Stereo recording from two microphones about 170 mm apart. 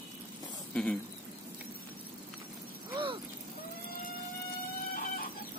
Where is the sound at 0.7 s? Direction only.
5° left (ahead or behind).